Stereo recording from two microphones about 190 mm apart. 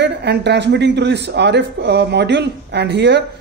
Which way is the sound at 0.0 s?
65° right (ahead or behind).